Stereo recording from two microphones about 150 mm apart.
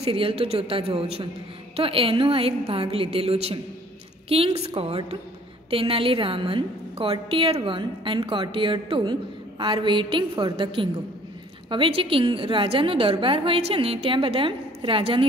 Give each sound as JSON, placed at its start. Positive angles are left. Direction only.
{"t": 0.0, "sound": "a woman's voice", "side_deg": -40}
{"t": 4.6, "sound": "a woman's voice", "side_deg": -40}